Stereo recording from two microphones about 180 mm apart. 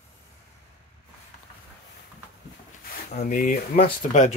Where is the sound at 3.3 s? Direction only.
50° left (ahead or behind).